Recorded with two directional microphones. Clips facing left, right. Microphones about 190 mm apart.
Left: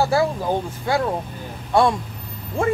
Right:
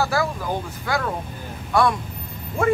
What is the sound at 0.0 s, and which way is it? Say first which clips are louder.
Speech: left 4 dB; 25° left (ahead or behind).